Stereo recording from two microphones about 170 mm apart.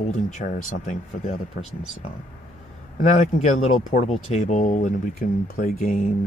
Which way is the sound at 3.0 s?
45° left (ahead or behind).